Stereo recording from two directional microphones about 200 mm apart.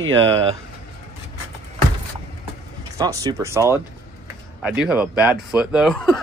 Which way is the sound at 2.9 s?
15° right (ahead or behind).